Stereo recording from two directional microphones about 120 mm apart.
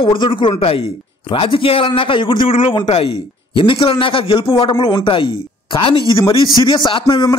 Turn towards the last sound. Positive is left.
turn(degrees=35)  # may be behind; listen again after turning